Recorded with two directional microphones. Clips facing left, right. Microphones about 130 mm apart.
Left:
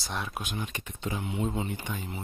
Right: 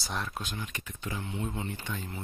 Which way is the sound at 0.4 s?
20° left (ahead or behind).